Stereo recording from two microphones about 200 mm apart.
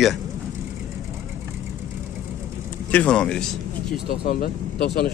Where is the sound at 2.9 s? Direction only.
5° left (ahead or behind).